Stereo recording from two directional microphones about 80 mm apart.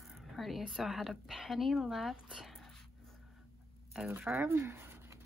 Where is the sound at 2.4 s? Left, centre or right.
Centre.